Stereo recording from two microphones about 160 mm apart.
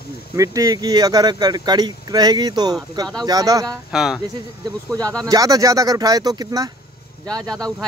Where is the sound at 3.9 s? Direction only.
Centre (ahead or behind).